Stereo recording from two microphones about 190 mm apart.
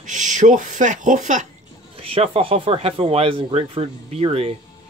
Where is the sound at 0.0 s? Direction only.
40° right (ahead or behind).